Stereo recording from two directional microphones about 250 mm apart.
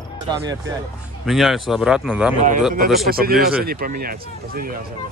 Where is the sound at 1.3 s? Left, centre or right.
Centre.